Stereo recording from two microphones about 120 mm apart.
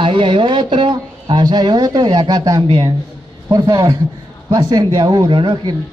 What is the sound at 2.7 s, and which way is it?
Speech, 45° right (ahead or behind).